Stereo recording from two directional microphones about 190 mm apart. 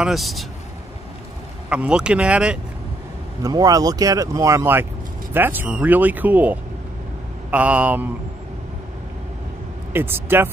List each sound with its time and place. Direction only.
0.0 s speech: centre (ahead or behind)
1.7 s speech: 5° right (ahead or behind)
3.4 s speech: 20° right (ahead or behind)
9.9 s speech: 10° right (ahead or behind)